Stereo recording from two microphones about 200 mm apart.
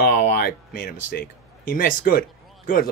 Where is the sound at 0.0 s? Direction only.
50° left (ahead or behind).